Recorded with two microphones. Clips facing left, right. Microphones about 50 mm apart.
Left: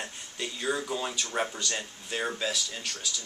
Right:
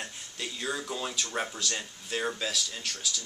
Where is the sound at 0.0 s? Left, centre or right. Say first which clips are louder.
Left 2 dB; centre.